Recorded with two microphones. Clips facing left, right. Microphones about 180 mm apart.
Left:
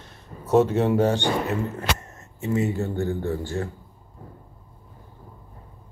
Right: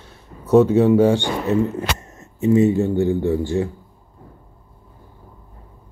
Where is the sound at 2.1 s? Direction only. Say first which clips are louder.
Right 13 dB; 20° right (ahead or behind).